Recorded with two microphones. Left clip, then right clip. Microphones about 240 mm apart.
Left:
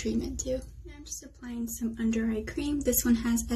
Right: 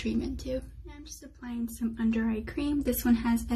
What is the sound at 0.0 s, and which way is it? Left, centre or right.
A woman's voice, centre.